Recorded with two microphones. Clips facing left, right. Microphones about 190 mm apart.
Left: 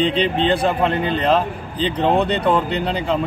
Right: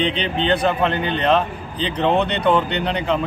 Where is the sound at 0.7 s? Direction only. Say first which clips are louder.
Left 1 dB; 5° left (ahead or behind).